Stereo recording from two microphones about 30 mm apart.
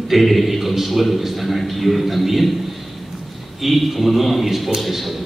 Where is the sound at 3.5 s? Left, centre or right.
Centre.